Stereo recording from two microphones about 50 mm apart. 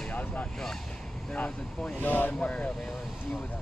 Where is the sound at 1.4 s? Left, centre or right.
Left.